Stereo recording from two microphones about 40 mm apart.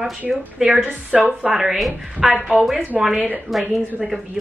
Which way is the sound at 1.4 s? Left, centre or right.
Centre.